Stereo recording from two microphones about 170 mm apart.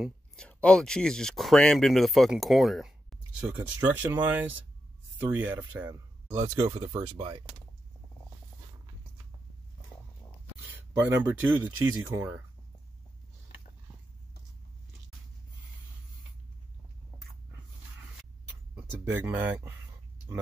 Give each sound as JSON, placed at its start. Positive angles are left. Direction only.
{"t": 0.0, "sound": "speech", "side_deg": 5}
{"t": 6.6, "sound": "speech", "side_deg": -30}
{"t": 11.2, "sound": "speech", "side_deg": -10}
{"t": 18.8, "sound": "speech", "side_deg": -10}